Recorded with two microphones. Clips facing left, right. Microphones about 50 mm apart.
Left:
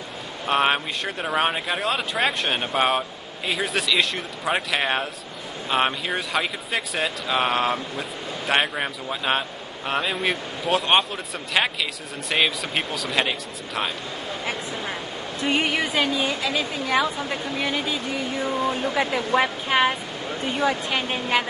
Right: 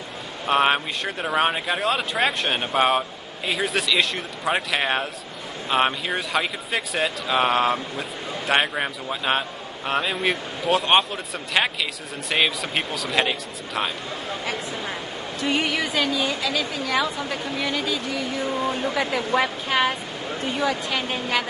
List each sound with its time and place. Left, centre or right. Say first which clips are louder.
0.5 s speech: right 1 dB; centre
15.4 s a woman's voice: left 1 dB; centre
18.5 s speech: left 1 dB; centre